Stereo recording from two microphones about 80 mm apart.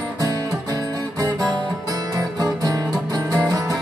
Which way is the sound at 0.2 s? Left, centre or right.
Right.